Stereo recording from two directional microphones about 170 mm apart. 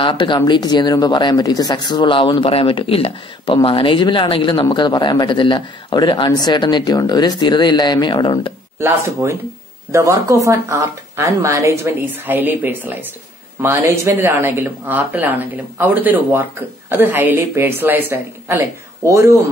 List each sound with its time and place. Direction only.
0.0 s speech: 30° left (ahead or behind)
8.7 s speech: 15° right (ahead or behind)